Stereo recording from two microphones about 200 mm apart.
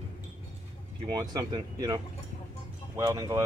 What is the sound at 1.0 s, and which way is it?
Speech, 20° right (ahead or behind).